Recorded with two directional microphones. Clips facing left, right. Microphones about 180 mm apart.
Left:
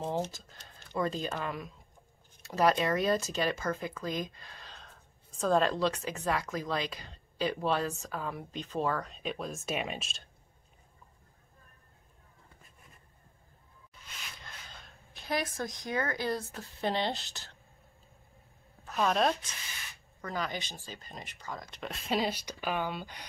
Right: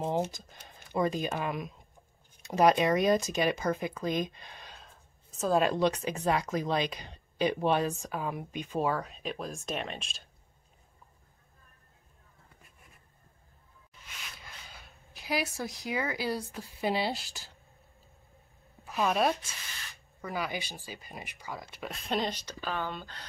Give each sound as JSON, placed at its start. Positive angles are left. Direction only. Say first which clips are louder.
{"t": 0.0, "sound": "speech", "louder": "right 3 dB", "side_deg": -15}
{"t": 5.3, "sound": "speech", "louder": "right 1 dB", "side_deg": -5}
{"t": 14.2, "sound": "speech", "louder": "even", "side_deg": -5}
{"t": 18.9, "sound": "speech", "louder": "even", "side_deg": -5}